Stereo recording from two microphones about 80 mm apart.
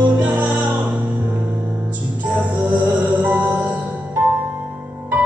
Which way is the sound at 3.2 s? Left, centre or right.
Centre.